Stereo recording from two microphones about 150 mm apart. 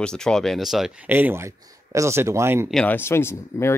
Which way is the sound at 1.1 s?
15° right (ahead or behind).